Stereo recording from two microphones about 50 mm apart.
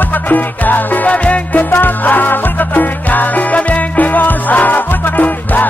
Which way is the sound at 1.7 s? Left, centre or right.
Left.